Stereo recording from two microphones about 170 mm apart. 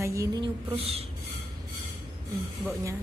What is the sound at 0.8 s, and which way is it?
Speech, 35° right (ahead or behind).